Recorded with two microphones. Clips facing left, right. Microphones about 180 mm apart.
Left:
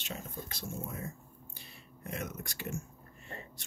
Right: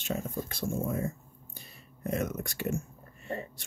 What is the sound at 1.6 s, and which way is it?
Whispering, 40° right (ahead or behind).